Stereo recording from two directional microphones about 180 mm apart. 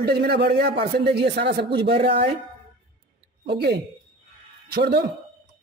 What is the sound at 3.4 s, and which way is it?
A man's voice, 65° right (ahead or behind).